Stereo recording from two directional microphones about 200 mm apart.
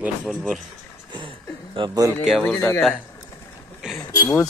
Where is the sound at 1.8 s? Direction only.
20° right (ahead or behind).